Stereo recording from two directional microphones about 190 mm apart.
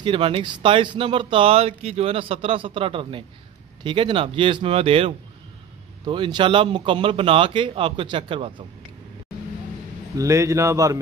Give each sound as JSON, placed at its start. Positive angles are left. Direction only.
{"t": 0.0, "sound": "speech", "side_deg": -25}
{"t": 10.1, "sound": "speech", "side_deg": -15}